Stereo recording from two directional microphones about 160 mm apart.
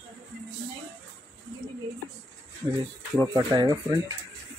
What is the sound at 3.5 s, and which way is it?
Speech, 25° right (ahead or behind).